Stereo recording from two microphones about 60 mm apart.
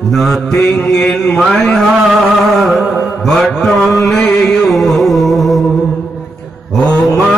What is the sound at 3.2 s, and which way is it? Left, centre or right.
Mantra, centre.